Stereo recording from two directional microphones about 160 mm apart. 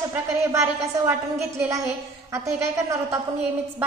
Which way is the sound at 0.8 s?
15° right (ahead or behind).